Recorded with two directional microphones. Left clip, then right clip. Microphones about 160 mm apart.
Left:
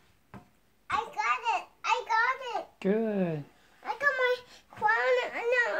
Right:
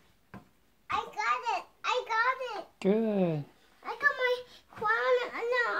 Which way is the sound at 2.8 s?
20° right (ahead or behind).